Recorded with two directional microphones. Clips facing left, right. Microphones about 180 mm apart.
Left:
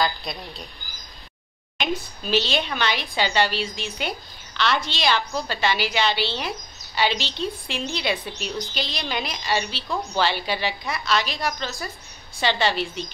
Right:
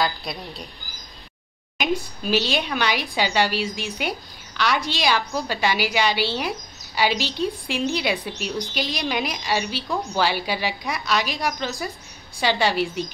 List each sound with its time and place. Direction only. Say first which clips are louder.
0.0 s speech: even; 5° right (ahead or behind)
1.8 s speech: right 3 dB; 10° right (ahead or behind)